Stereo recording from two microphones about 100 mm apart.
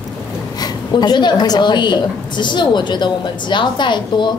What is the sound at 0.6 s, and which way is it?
A woman's voice, 45° left (ahead or behind).